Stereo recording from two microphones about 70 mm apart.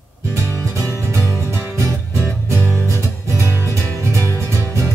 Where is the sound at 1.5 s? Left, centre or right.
Right.